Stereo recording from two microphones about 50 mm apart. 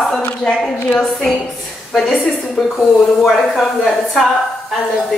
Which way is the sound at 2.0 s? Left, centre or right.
Left.